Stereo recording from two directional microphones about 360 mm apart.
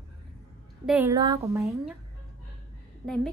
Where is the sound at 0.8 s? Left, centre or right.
Centre.